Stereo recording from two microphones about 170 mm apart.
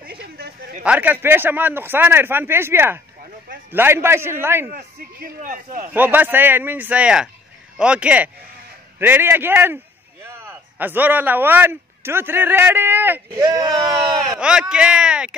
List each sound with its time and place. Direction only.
0.0 s a sound: 65° right (ahead or behind)
0.8 s speech: 10° right (ahead or behind)
4.6 s speech: 55° right (ahead or behind)
5.9 s speech: 10° right (ahead or behind)
13.5 s speech: 25° right (ahead or behind)
14.4 s speech: 5° right (ahead or behind)